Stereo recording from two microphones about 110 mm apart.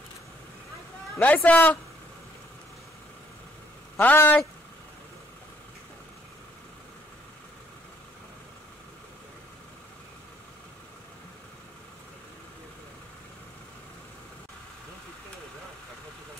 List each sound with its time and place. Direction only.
1.2 s a man's voice: 15° left (ahead or behind)
4.0 s a man's voice: 15° left (ahead or behind)